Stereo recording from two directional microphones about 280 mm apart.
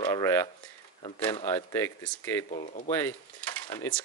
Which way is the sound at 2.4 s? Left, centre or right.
Left.